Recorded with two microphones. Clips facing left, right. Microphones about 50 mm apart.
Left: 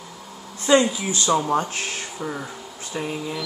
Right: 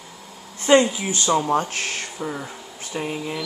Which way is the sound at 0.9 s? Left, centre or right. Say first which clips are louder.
Even; right.